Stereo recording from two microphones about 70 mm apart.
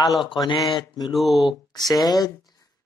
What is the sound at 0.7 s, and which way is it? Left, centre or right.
Mantra, left.